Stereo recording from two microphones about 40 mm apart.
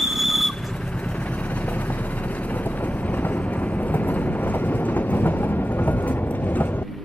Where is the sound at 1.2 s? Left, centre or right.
Left.